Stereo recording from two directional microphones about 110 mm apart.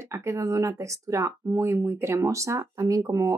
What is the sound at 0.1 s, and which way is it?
A woman's voice, 25° right (ahead or behind).